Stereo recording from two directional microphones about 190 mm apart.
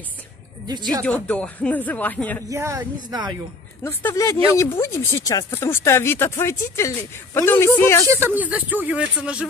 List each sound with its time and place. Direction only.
1.0 s speech: 5° left (ahead or behind)
2.5 s speech: 15° right (ahead or behind)
3.8 s speech: 15° left (ahead or behind)
8.1 s speech: 10° right (ahead or behind)